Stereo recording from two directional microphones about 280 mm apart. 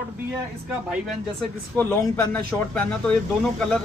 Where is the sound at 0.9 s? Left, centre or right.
Centre.